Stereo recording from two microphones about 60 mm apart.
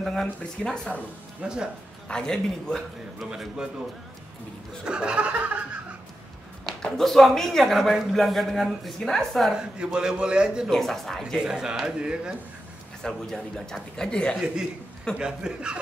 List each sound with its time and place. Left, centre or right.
0.0 s speech: centre
0.4 s speech: left
1.4 s a man's voice: centre
2.0 s a man's voice: centre
3.2 s a man's voice: centre
4.8 s a man's voice: centre
6.8 s a woman's voice: centre
9.6 s a man's voice: centre
10.7 s a woman's voice: centre
11.4 s a man's voice: centre
13.0 s a man's voice: centre
14.3 s a man's voice: centre